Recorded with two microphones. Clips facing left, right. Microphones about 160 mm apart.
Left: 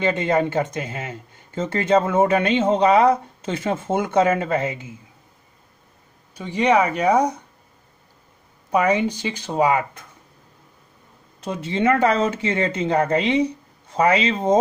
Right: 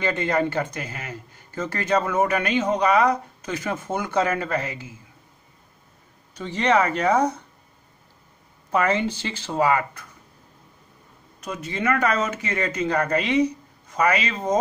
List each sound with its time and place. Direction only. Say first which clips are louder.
0.0 s speech: left 3 dB; 20° left (ahead or behind)
6.3 s speech: left 3 dB; 10° left (ahead or behind)
8.7 s speech: left 3 dB; 15° left (ahead or behind)
11.4 s speech: left 5 dB; 25° left (ahead or behind)